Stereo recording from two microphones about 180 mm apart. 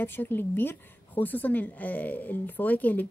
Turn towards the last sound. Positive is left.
turn(degrees=10)  # may be behind; listen again after turning